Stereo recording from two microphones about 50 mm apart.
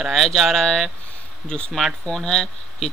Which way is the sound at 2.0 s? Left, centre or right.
Centre.